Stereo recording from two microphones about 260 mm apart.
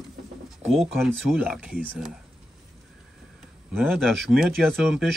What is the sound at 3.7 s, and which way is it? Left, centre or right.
Speech, centre.